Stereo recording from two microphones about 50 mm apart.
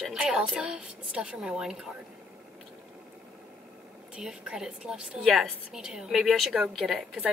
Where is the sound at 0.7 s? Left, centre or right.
Centre.